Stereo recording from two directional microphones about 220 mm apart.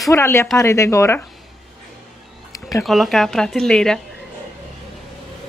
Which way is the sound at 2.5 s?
15° left (ahead or behind).